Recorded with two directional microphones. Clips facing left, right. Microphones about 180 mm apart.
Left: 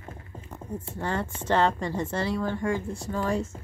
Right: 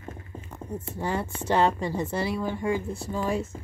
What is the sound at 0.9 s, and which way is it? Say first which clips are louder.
A woman's voice: right 1 dB; 10° right (ahead or behind).